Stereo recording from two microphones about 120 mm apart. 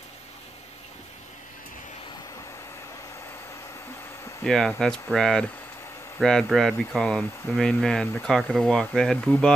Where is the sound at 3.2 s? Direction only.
25° left (ahead or behind).